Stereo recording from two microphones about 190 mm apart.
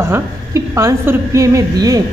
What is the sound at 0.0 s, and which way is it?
Speech, 15° right (ahead or behind).